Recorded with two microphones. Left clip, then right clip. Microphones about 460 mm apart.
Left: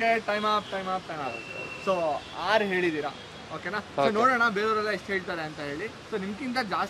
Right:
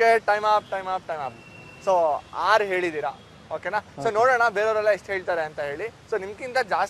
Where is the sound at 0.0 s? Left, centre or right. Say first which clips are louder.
Right 7 dB; right.